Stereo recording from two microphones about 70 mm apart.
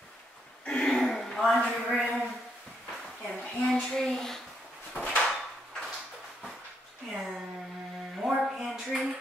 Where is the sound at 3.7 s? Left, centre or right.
Centre.